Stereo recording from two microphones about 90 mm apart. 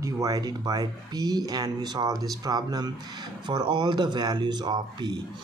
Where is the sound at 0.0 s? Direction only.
40° right (ahead or behind).